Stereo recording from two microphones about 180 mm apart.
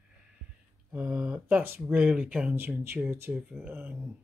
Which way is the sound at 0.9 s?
5° right (ahead or behind).